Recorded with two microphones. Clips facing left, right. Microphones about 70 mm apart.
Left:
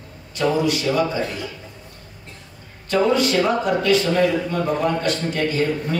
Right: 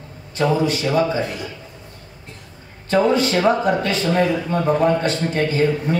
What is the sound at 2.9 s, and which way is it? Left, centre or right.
Speech, right.